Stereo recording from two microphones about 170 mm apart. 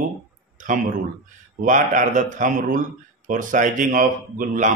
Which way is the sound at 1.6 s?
50° right (ahead or behind).